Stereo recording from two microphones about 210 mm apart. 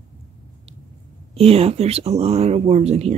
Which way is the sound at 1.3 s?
30° right (ahead or behind).